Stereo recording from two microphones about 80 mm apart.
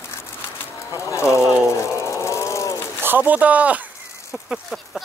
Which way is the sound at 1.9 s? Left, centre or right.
Left.